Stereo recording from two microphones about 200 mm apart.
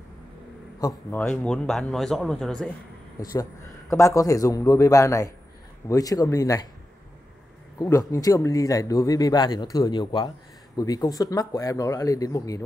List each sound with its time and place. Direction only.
1.1 s speech: 5° left (ahead or behind)
3.9 s speech: 15° left (ahead or behind)
7.8 s speech: 15° left (ahead or behind)